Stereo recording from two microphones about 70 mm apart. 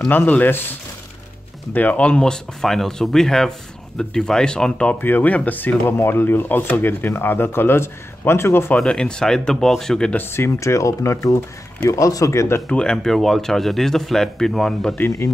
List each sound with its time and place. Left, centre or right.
0.3 s speech: left; by 4.9 s centre
5.0 s speech: left
8.7 s speech: centre
10.1 s speech: left
12.6 s speech: centre
15.0 s speech: left